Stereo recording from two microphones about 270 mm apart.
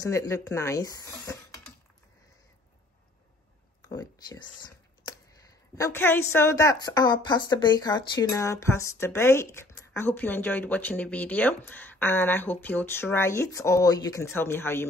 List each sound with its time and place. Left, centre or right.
0.0 s speech: centre
3.9 s speech: centre